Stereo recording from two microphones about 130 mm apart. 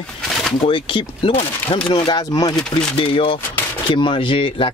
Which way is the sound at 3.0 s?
45° left (ahead or behind).